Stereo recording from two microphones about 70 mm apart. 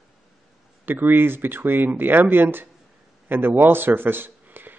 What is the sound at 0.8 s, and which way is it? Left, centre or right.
A man's voice, right.